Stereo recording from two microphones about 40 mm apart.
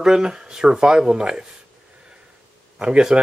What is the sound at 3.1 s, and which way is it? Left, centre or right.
Speech, right.